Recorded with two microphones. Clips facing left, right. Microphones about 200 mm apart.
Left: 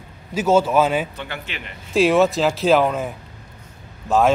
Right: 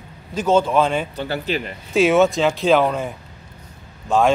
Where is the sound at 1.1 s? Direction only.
35° right (ahead or behind).